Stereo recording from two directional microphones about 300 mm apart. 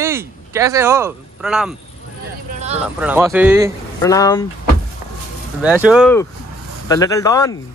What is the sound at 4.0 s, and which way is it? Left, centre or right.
Speech, centre.